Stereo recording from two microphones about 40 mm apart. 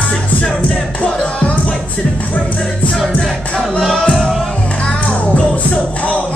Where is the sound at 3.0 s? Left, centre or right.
Centre.